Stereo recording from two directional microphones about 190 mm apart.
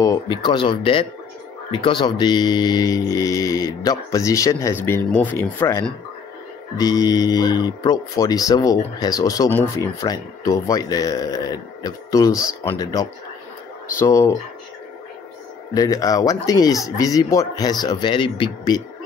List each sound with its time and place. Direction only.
0.0 s speech: 20° left (ahead or behind)
15.7 s speech: 20° left (ahead or behind)